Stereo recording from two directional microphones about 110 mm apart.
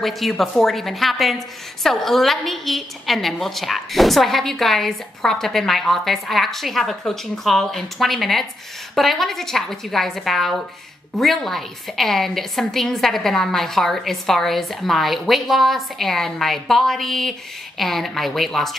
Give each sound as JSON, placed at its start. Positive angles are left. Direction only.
{"t": 0.0, "sound": "a woman's voice", "side_deg": 0}